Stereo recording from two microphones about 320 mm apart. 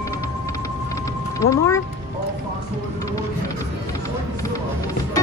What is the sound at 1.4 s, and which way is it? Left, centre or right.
Speech, centre.